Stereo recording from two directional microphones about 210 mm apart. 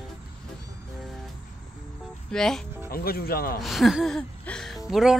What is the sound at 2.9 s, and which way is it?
Speech, 45° left (ahead or behind).